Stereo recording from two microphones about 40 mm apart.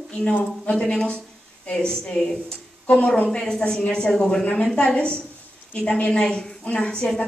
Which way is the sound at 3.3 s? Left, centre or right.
Centre.